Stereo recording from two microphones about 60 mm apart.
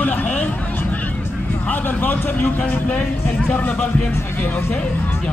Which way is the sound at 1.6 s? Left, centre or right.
Left.